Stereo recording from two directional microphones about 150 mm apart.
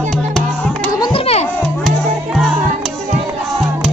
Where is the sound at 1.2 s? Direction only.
45° left (ahead or behind).